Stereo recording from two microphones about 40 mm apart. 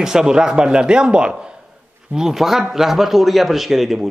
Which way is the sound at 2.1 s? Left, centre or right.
Centre.